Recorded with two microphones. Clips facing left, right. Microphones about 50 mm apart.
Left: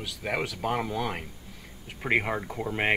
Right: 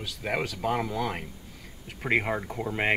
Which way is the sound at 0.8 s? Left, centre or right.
Left.